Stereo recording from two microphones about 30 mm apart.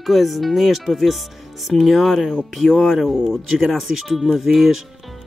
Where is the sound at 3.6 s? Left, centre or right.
Centre.